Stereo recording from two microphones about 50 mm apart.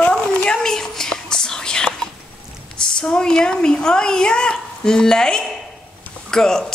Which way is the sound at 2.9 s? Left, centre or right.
Centre.